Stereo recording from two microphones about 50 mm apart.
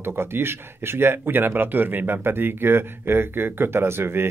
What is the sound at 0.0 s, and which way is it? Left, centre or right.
Speech, right.